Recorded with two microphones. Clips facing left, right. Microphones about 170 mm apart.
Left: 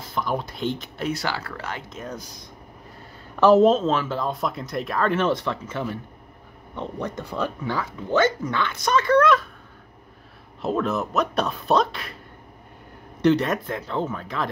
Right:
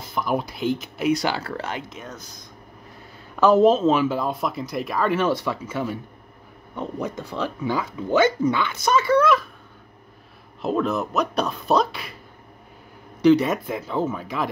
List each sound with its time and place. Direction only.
0.1 s speech: 10° right (ahead or behind); by 1.8 s 25° right (ahead or behind)
3.4 s speech: centre (ahead or behind)
3.8 s speech: 10° right (ahead or behind)
10.6 s speech: centre (ahead or behind)
13.2 s speech: centre (ahead or behind)